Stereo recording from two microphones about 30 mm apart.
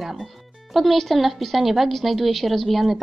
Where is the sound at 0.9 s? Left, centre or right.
Centre.